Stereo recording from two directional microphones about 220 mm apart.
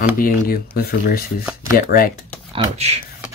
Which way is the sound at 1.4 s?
10° right (ahead or behind).